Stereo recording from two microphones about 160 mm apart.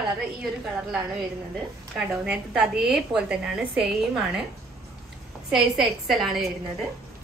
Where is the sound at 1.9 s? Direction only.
5° right (ahead or behind).